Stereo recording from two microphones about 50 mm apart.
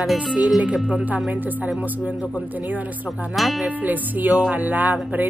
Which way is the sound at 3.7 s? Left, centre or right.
Right.